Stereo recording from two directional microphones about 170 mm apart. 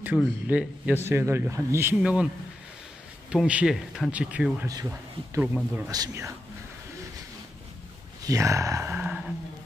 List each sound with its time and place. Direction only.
0.1 s speech: 10° left (ahead or behind)
0.5 s speech: 5° right (ahead or behind)
3.3 s speech: 5° right (ahead or behind)
4.6 s speech: 20° right (ahead or behind)
8.3 s speech: 20° right (ahead or behind)